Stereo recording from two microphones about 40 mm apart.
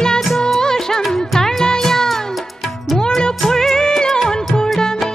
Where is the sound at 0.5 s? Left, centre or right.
Centre.